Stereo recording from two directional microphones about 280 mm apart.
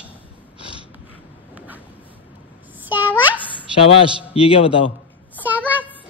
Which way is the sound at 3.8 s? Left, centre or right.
Centre.